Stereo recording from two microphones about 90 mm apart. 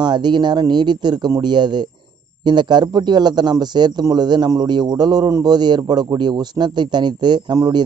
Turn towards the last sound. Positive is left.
turn(degrees=-50)  # may be behind; listen again after turning